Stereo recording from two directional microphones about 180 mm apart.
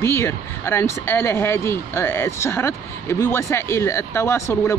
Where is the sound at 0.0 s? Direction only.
15° left (ahead or behind).